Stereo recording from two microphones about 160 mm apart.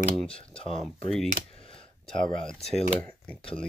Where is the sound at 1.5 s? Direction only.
35° left (ahead or behind).